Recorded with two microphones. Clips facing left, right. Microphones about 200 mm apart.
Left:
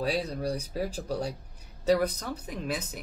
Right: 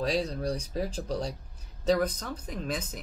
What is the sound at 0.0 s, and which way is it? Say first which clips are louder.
Speech: right 1 dB; 5° left (ahead or behind).